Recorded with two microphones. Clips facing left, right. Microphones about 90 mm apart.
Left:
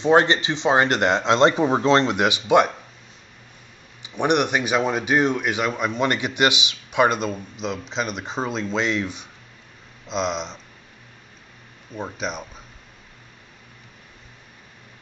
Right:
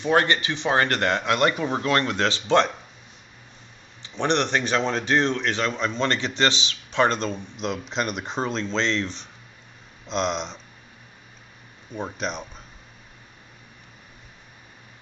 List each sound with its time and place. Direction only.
0.0 s speech: 20° left (ahead or behind)
4.0 s speech: 15° left (ahead or behind)
11.9 s speech: centre (ahead or behind)